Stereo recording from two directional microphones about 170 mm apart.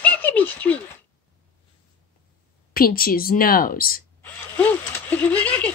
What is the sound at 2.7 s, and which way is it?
Speech, 60° left (ahead or behind).